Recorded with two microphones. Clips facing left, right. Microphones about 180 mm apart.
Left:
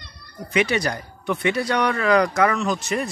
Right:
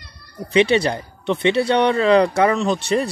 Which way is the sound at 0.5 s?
30° right (ahead or behind).